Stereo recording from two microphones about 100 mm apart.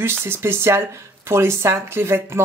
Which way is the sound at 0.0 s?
25° right (ahead or behind).